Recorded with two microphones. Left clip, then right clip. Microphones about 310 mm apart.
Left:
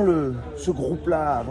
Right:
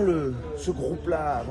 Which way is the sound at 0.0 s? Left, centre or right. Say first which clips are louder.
Left 3 dB; centre.